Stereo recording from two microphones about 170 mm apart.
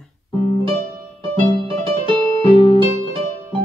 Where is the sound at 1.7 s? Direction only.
30° right (ahead or behind).